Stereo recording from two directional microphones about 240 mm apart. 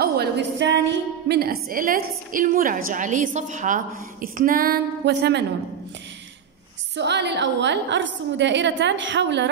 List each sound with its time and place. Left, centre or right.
0.0 s a woman's voice: right
7.0 s a woman's voice: right